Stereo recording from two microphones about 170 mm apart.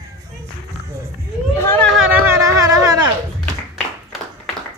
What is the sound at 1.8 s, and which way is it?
Speech, centre (ahead or behind).